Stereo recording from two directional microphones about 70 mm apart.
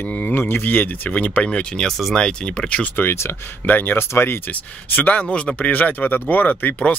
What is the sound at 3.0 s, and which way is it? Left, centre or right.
Speech, left.